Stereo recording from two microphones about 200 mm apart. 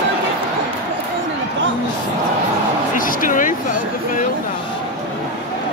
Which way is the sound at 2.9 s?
40° left (ahead or behind).